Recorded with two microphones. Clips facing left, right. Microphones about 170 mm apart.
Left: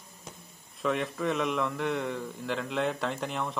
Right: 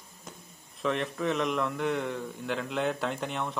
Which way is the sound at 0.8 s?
Centre (ahead or behind).